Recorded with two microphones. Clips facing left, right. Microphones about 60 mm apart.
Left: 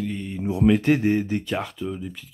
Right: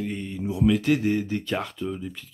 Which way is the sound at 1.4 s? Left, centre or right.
Centre.